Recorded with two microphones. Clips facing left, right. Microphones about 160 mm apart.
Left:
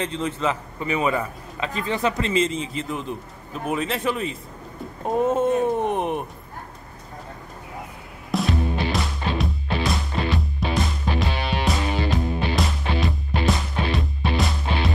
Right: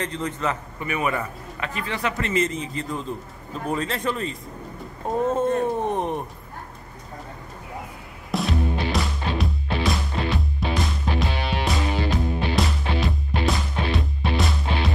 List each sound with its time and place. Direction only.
0.1 s a man's voice: 25° left (ahead or behind)
8.3 s music: centre (ahead or behind)